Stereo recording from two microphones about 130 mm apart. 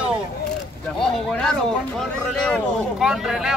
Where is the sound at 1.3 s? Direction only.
5° left (ahead or behind).